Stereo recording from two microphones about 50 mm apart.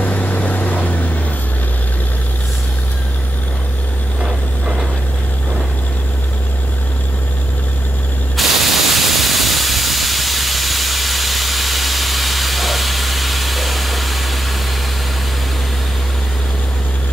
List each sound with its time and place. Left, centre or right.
0.0 s vehicle: left
4.2 s vehicle: centre
8.4 s steam: centre